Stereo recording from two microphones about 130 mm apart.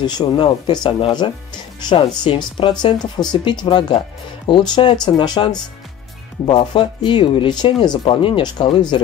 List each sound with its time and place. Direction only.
0.0 s speech: 35° left (ahead or behind)